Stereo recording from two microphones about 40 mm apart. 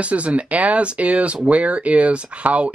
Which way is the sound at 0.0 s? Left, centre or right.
Right.